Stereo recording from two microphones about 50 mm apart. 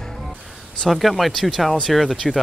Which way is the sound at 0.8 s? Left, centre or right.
Centre.